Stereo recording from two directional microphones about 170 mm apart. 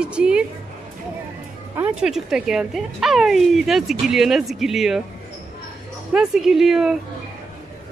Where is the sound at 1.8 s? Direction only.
5° right (ahead or behind).